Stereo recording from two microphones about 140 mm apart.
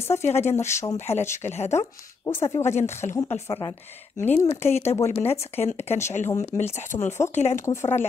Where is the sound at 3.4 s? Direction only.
30° left (ahead or behind).